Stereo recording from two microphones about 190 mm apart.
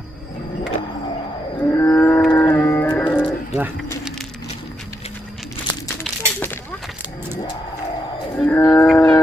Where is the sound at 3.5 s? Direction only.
5° right (ahead or behind).